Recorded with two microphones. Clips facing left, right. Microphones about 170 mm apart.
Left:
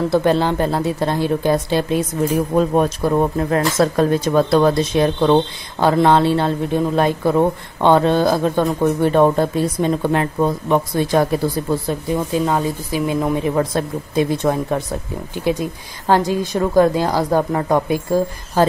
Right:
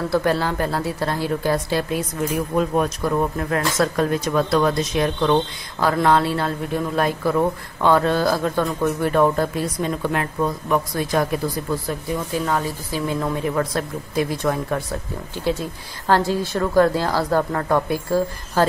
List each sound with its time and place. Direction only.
0.1 s speech: 20° left (ahead or behind)